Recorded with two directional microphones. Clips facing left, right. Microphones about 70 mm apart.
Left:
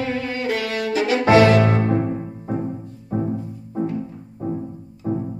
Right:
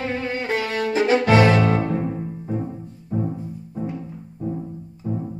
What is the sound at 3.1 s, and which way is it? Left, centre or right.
Music, left.